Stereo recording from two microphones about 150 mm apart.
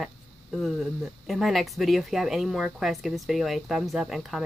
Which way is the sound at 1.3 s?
Centre (ahead or behind).